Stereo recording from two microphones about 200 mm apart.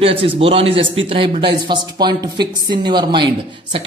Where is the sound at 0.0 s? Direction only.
25° right (ahead or behind).